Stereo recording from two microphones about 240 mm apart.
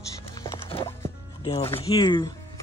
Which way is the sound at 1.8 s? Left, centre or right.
Left.